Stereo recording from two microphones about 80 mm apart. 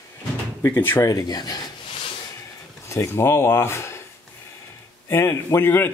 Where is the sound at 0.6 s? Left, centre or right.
Left.